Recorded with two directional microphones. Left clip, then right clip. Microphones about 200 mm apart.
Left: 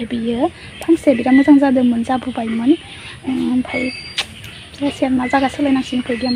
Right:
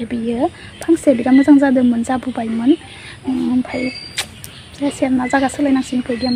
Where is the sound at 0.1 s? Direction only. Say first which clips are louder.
Even; centre (ahead or behind).